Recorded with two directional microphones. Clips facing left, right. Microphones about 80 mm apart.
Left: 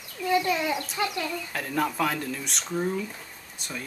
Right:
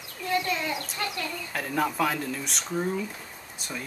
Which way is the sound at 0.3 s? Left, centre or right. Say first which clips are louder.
Left 3 dB; centre.